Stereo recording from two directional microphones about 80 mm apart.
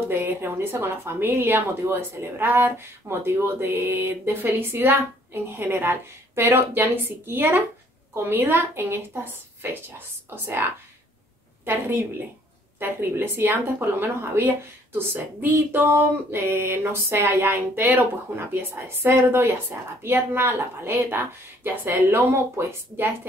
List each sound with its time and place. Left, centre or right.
0.1 s a woman's voice: right